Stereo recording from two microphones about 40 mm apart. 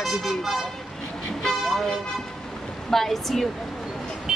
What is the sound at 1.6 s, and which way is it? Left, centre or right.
A woman's voice, centre.